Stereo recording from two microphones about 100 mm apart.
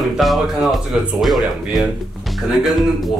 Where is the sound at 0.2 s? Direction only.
Centre (ahead or behind).